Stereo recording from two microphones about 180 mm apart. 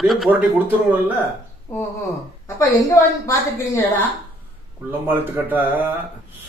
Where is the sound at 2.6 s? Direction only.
20° left (ahead or behind).